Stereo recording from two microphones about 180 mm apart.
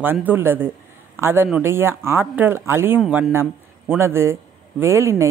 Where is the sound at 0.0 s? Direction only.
10° right (ahead or behind).